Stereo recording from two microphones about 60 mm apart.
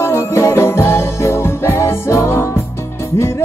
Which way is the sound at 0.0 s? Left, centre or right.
Left.